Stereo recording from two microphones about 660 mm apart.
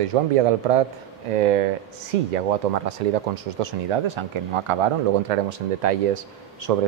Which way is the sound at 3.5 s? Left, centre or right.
Right.